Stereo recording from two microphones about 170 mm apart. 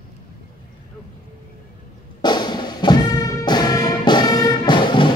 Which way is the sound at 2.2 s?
25° left (ahead or behind).